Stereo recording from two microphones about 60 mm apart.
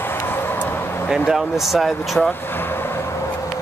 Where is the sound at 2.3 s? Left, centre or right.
Left.